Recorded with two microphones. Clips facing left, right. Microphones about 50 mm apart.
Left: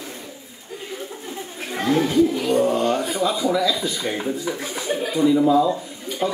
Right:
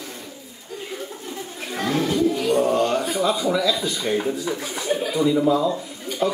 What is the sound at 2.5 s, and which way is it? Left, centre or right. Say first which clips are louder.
Speech: even; centre.